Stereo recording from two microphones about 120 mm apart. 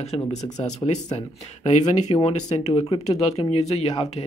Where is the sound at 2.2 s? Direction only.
50° left (ahead or behind).